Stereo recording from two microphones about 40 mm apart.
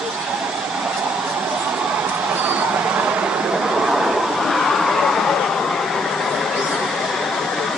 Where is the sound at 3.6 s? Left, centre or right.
Centre.